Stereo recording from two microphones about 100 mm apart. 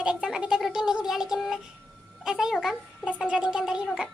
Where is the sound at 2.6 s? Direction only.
10° right (ahead or behind).